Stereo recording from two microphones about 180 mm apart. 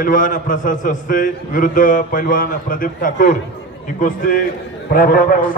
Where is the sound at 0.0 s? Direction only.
50° left (ahead or behind).